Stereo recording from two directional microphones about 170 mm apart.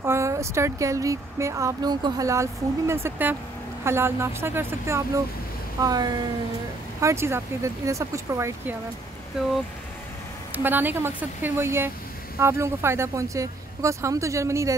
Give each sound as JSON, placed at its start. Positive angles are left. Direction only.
{"t": 0.0, "sound": "speech", "side_deg": -15}
{"t": 10.5, "sound": "speech", "side_deg": -10}